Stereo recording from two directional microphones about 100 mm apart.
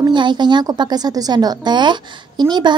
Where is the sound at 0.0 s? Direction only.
50° right (ahead or behind).